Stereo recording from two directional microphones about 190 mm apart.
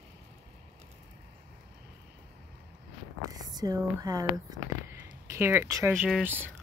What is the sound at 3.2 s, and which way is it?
Speech, 20° right (ahead or behind).